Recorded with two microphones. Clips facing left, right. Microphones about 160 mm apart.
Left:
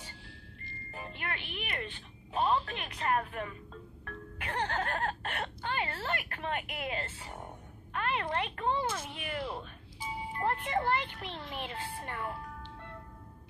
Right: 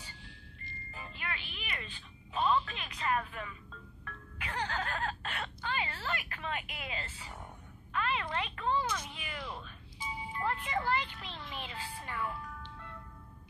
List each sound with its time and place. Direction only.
0.9 s music: 55° left (ahead or behind)
2.4 s a sound: 40° left (ahead or behind)
2.7 s speech: 55° left (ahead or behind)
8.6 s speech: 25° left (ahead or behind)
9.1 s speech: 55° left (ahead or behind)
9.4 s a sound: 35° left (ahead or behind)
10.3 s speech: 55° left (ahead or behind)